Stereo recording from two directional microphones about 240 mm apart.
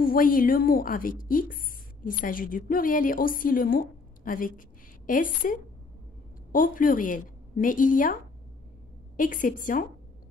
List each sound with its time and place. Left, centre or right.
0.0 s a woman's voice: left